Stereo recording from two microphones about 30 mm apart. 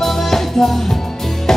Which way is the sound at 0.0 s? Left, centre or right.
Centre.